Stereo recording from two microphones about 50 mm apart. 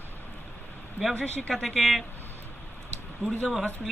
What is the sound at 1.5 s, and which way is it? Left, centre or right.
Speech, centre.